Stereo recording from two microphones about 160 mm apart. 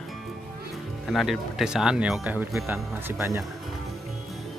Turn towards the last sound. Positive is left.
turn(degrees=-15)  # may be behind; listen again after turning